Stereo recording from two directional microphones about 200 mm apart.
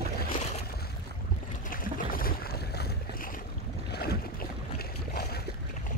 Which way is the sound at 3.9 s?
50° left (ahead or behind).